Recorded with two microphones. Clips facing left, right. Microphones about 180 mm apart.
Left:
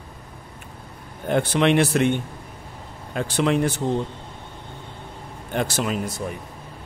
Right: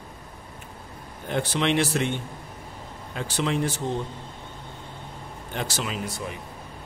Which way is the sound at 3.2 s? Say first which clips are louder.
Left 5 dB; 60° left (ahead or behind).